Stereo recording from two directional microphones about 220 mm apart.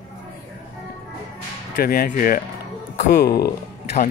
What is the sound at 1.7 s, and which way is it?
Speech, 40° left (ahead or behind).